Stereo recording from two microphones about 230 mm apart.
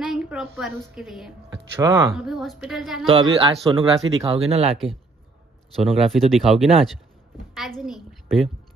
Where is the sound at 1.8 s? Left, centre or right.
Centre.